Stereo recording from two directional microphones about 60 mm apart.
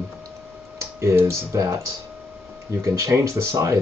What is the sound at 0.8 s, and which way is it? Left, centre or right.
Speech, right.